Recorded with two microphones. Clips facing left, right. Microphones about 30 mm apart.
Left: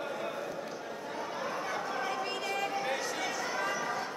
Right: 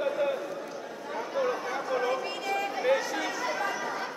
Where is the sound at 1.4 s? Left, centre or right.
Centre.